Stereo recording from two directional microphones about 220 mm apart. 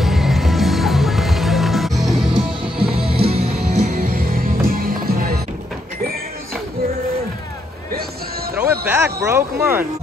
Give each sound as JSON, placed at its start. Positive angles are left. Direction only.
{"t": 0.0, "sound": "music", "side_deg": 0}
{"t": 2.9, "sound": "music", "side_deg": -25}
{"t": 3.8, "sound": "music", "side_deg": -40}
{"t": 8.5, "sound": "music", "side_deg": -5}